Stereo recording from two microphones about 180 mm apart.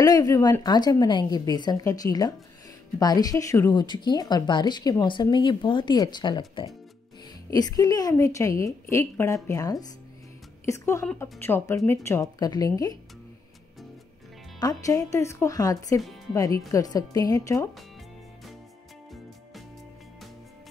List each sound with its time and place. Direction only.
0.0 s a woman's voice: 20° left (ahead or behind)
14.6 s a woman's voice: 20° left (ahead or behind)